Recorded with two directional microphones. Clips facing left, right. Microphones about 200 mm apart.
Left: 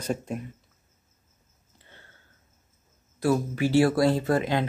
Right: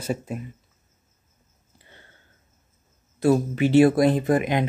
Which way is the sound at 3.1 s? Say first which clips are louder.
Right 4 dB; 25° right (ahead or behind).